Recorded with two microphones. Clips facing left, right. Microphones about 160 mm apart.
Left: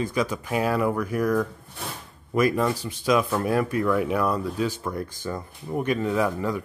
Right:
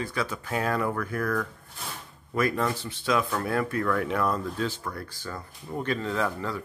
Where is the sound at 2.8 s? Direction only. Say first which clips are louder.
Left 4 dB; 15° left (ahead or behind).